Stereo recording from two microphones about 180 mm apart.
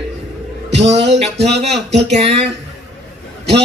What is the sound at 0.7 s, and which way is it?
Speech, 75° right (ahead or behind).